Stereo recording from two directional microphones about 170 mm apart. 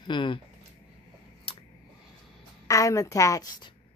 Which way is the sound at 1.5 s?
30° left (ahead or behind).